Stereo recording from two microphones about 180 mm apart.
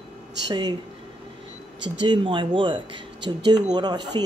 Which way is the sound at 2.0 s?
25° right (ahead or behind).